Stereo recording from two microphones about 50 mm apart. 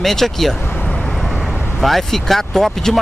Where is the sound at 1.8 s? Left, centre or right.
Centre.